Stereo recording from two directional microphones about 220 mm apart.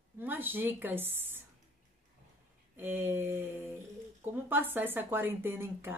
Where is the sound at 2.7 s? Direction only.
10° right (ahead or behind).